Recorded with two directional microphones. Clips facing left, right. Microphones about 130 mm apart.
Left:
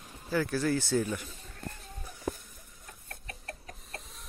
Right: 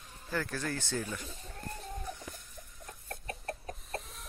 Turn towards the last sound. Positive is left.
turn(degrees=-30)  # may be behind; listen again after turning